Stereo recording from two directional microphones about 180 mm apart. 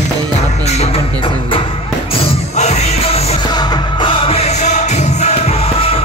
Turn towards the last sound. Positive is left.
turn(degrees=35)  # may be behind; listen again after turning